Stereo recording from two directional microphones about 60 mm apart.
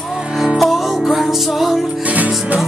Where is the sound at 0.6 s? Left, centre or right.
Centre.